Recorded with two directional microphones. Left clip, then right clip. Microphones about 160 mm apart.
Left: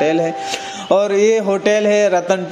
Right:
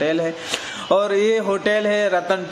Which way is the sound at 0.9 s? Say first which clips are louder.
Left 4 dB; 10° left (ahead or behind).